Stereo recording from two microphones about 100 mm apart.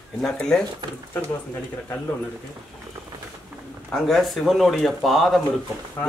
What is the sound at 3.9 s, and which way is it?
A man's voice, centre (ahead or behind).